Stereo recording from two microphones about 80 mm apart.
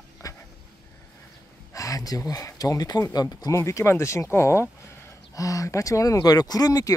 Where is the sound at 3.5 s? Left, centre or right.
Left.